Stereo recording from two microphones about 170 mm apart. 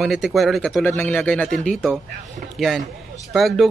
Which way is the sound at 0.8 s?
10° left (ahead or behind).